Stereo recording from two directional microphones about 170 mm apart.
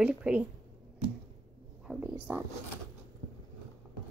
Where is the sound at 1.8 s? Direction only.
10° right (ahead or behind).